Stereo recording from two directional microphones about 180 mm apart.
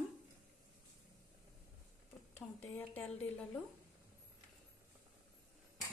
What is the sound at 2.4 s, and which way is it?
Speech, centre (ahead or behind).